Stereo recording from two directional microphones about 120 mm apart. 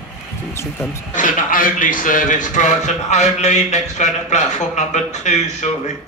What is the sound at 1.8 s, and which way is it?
A man's voice, 90° left.